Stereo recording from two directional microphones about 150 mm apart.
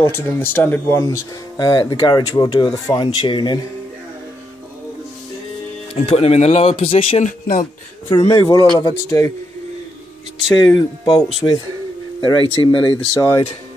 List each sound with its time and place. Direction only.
0.0 s speech: 15° left (ahead or behind); by 3.5 s 30° left (ahead or behind)
5.9 s speech: 40° left (ahead or behind)
7.2 s speech: 60° left (ahead or behind)
8.1 s speech: 25° left (ahead or behind)
10.6 s speech: 30° left (ahead or behind)
12.3 s speech: 30° left (ahead or behind)